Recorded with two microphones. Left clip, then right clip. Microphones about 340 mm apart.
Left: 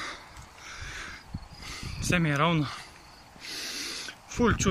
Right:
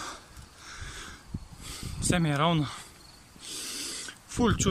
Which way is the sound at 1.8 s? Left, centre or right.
Centre.